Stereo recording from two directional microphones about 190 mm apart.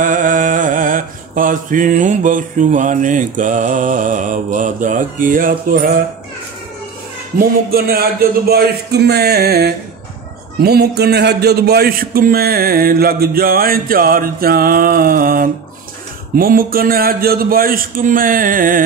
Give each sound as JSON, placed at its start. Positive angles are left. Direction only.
{"t": 0.0, "sound": "mantra", "side_deg": -45}
{"t": 7.3, "sound": "a sound", "side_deg": -50}
{"t": 10.6, "sound": "a man's voice", "side_deg": -55}